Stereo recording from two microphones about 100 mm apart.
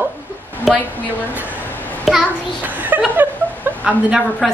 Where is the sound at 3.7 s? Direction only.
20° right (ahead or behind).